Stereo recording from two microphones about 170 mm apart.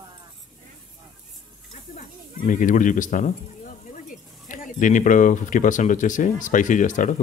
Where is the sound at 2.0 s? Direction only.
50° left (ahead or behind).